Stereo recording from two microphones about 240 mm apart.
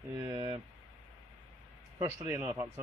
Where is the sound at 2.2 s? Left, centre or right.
Centre.